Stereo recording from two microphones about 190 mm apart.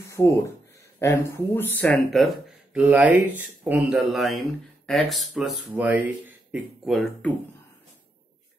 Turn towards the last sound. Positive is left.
turn(degrees=0)  # may be behind; listen again after turning